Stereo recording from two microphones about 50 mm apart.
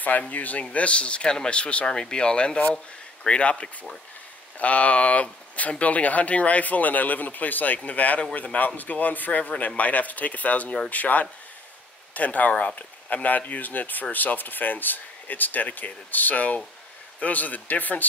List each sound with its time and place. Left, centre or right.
0.3 s speech: left